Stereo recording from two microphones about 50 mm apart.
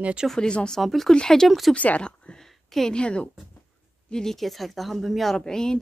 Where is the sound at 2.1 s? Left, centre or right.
Centre.